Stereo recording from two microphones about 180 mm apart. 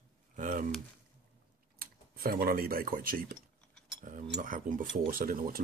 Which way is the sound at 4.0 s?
45° right (ahead or behind).